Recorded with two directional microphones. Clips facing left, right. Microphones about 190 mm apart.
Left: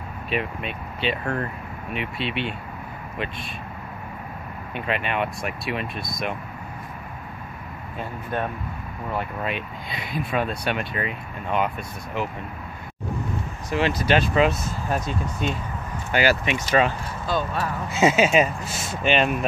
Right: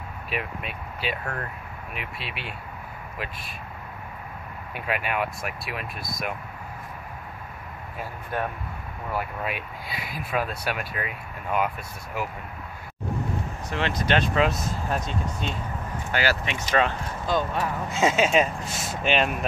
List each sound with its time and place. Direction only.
0.3 s speech: 5° right (ahead or behind)
4.7 s speech: 5° right (ahead or behind)
8.0 s speech: 10° right (ahead or behind)
13.7 s speech: 5° left (ahead or behind)
17.3 s speech: 15° right (ahead or behind)
17.9 s speech: 5° left (ahead or behind)